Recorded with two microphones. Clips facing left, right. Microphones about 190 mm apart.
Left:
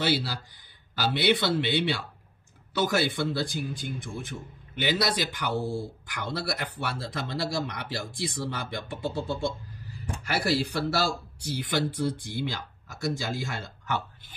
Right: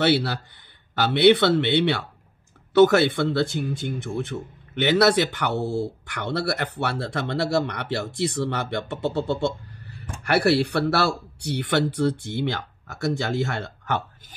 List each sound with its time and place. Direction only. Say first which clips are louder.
0.0 s a man's voice: right 7 dB; 65° right (ahead or behind)